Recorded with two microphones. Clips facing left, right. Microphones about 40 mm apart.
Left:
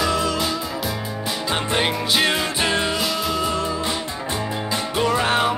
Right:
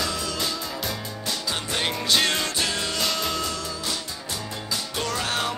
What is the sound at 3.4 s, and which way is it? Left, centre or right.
Music, left.